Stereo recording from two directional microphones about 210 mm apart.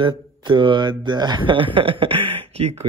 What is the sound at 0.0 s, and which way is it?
Speech, 20° right (ahead or behind).